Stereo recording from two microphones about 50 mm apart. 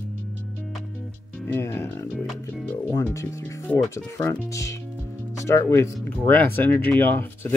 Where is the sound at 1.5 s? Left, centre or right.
Left.